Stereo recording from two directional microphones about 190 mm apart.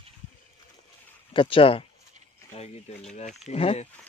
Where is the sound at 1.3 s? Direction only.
30° left (ahead or behind).